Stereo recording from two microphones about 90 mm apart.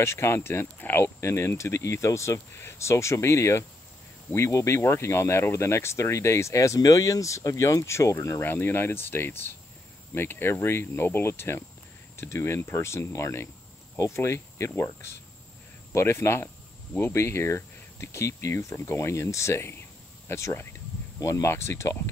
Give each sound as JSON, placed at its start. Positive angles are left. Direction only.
{"t": 0.0, "sound": "speech", "side_deg": 30}